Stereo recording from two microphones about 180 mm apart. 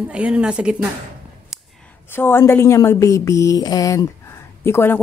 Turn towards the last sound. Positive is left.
turn(degrees=15)  # may be behind; listen again after turning